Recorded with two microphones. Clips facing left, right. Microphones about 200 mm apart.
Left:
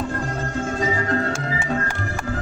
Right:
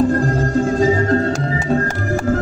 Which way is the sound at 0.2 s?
40° right (ahead or behind).